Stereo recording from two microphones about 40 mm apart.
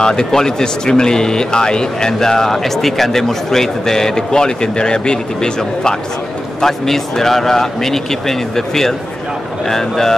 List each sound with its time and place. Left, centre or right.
0.0 s speech: centre